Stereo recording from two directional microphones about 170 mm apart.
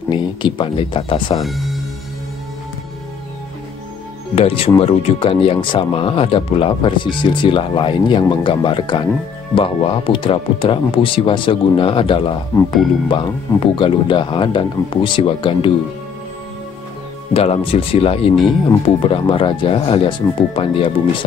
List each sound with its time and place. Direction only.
0.1 s speech: 30° left (ahead or behind)
1.4 s speech: centre (ahead or behind)
4.4 s speech: 35° left (ahead or behind)
17.3 s speech: 35° left (ahead or behind)